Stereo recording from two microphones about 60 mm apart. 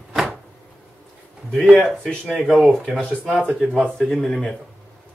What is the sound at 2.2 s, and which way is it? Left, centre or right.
Speech, centre.